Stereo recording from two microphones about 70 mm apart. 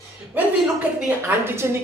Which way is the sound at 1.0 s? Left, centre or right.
Right.